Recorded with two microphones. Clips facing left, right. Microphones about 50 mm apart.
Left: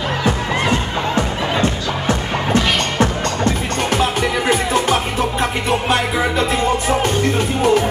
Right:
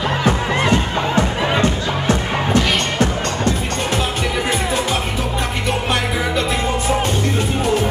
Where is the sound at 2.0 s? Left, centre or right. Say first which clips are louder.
Even; left.